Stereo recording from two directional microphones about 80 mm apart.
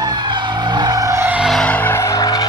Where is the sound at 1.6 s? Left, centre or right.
Left.